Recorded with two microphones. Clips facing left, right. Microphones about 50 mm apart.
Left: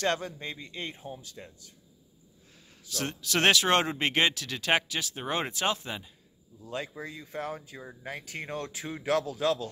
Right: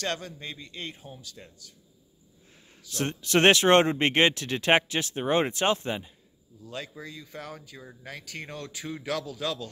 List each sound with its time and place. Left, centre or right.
0.0 s speech: centre
1.4 s speech: centre
2.9 s speech: right
6.6 s speech: centre